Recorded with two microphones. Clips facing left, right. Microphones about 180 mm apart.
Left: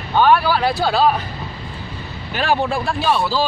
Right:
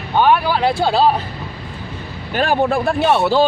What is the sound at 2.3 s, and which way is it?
Speech, 50° right (ahead or behind).